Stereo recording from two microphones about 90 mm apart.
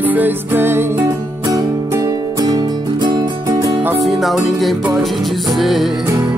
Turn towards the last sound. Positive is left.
turn(degrees=0)  # may be behind; listen again after turning